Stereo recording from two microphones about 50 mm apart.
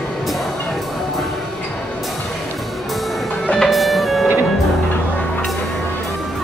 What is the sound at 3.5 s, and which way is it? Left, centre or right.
Music, centre.